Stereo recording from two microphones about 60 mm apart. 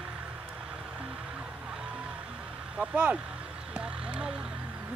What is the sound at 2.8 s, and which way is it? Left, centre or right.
Speech, centre.